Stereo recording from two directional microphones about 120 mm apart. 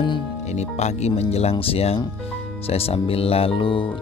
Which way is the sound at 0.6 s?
70° left (ahead or behind).